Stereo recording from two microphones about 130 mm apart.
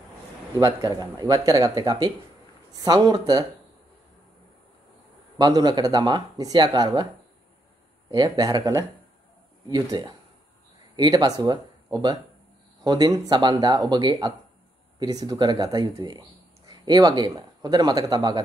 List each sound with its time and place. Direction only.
0.6 s speech: 30° right (ahead or behind)
5.4 s speech: 30° right (ahead or behind)
8.1 s speech: 30° right (ahead or behind)